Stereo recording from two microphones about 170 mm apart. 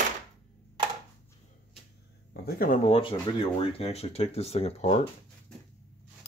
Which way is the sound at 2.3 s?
65° left (ahead or behind).